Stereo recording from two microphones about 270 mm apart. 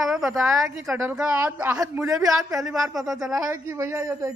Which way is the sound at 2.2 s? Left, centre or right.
Centre.